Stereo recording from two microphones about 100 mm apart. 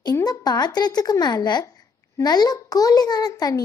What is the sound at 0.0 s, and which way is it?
A child's voice, 40° left (ahead or behind).